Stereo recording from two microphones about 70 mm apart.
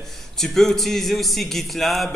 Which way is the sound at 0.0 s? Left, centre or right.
Centre.